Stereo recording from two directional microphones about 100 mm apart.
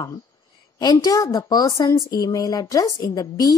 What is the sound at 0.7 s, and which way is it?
Speech, 40° left (ahead or behind).